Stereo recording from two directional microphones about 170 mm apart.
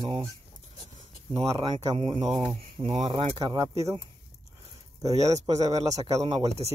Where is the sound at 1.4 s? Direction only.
20° right (ahead or behind); by 2.9 s 35° right (ahead or behind).